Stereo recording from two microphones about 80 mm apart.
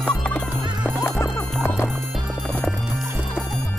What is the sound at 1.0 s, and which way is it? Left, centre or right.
Music, left.